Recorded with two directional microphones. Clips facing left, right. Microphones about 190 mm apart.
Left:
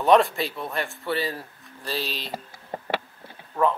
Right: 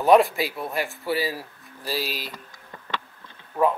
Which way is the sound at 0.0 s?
Centre (ahead or behind).